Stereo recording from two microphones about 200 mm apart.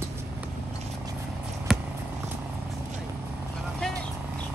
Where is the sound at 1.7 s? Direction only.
Centre (ahead or behind).